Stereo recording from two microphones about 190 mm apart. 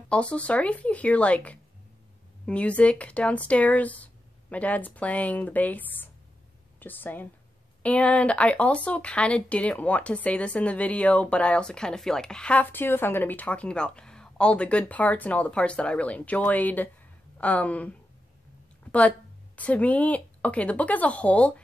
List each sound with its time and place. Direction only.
0.1 s a woman's voice: 5° left (ahead or behind)